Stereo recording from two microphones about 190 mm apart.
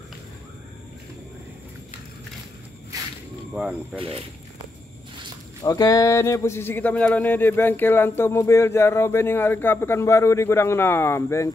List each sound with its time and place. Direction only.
3.5 s speech: 5° right (ahead or behind)
5.6 s speech: 20° left (ahead or behind)